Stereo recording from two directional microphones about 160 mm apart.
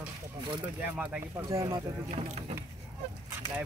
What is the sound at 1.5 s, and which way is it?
Speech, 20° right (ahead or behind).